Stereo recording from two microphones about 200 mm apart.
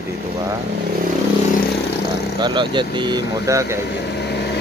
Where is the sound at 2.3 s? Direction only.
20° right (ahead or behind).